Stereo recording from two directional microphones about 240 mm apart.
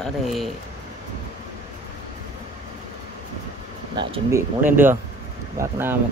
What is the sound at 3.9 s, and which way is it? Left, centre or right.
Speech, centre.